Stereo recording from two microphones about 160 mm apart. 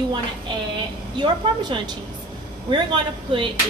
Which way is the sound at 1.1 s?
30° right (ahead or behind).